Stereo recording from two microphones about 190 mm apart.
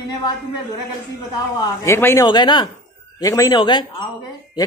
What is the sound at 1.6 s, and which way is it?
Speech, 15° left (ahead or behind).